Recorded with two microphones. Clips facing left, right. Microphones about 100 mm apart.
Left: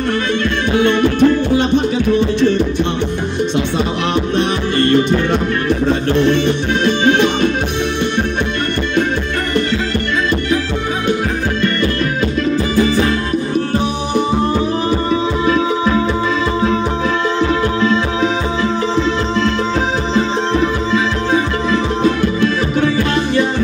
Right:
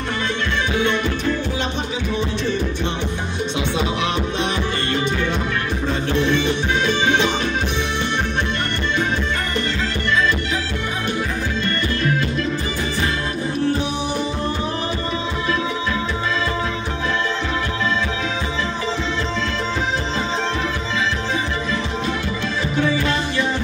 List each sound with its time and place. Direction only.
0.7 s music: 60° left (ahead or behind)
4.4 s music: 55° left (ahead or behind)